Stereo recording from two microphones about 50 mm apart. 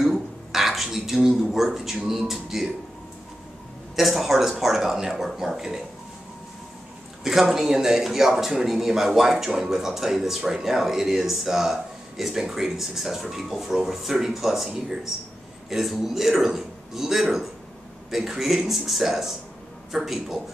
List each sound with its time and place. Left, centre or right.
0.0 s speech: centre
3.9 s a man's voice: centre
7.2 s a man's voice: centre
15.7 s a man's voice: centre